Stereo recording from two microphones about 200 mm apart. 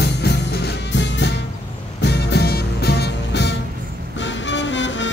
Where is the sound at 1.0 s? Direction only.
60° left (ahead or behind).